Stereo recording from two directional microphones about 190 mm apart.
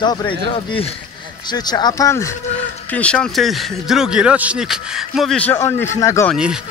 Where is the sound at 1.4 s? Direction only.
20° left (ahead or behind).